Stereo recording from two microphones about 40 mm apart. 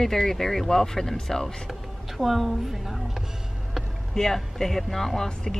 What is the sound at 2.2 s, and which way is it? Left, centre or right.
A woman's voice, centre.